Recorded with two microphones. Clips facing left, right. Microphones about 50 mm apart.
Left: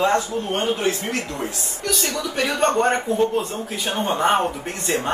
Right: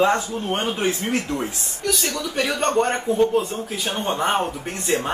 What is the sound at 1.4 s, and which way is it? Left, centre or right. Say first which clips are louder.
A man's voice: right 1 dB; centre.